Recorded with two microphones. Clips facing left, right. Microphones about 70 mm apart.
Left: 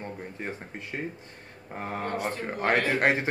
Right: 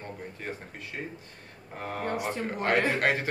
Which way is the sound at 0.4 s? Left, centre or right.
Left.